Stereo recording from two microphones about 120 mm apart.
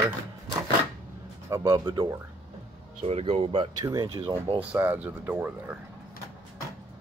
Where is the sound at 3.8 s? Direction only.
30° right (ahead or behind).